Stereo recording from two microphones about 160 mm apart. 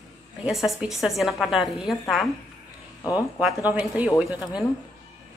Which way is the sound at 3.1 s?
10° right (ahead or behind).